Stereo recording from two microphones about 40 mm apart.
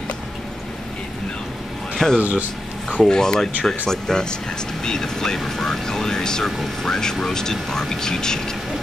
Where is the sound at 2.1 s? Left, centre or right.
Right.